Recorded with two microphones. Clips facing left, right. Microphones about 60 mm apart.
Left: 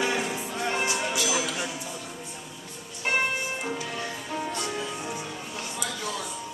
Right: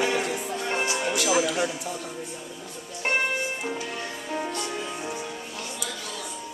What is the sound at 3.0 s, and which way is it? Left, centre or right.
Music, right.